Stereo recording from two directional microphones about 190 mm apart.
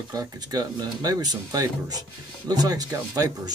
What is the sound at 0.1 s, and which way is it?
Speech, 20° right (ahead or behind).